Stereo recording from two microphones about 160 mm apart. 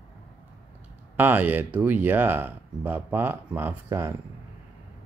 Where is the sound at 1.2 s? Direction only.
10° right (ahead or behind).